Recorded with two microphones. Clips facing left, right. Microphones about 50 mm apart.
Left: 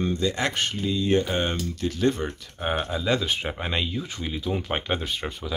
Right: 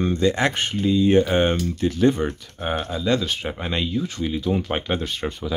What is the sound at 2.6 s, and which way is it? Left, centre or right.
Speech, centre.